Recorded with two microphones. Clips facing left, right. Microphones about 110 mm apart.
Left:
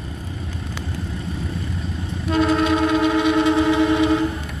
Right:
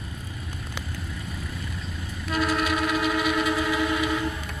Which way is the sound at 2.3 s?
25° left (ahead or behind).